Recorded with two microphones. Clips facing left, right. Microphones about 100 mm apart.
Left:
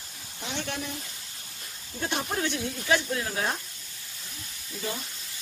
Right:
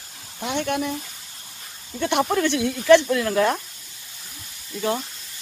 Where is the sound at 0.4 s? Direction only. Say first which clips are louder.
Right 10 dB; 55° right (ahead or behind).